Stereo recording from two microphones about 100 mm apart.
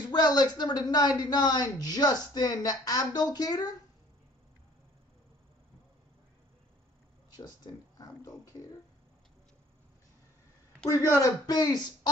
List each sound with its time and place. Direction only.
0.1 s a man's voice: 45° left (ahead or behind)
7.3 s a man's voice: 40° left (ahead or behind)
10.9 s a man's voice: 35° left (ahead or behind)